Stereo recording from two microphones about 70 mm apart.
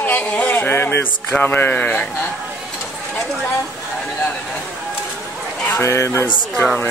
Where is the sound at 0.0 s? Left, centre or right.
Left.